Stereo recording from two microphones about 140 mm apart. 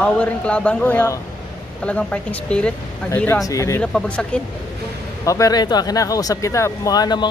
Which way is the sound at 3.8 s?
5° left (ahead or behind).